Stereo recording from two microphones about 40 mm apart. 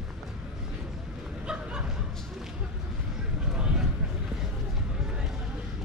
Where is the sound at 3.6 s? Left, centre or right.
Right.